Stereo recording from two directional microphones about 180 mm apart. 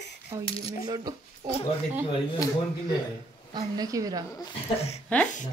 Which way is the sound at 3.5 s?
20° right (ahead or behind).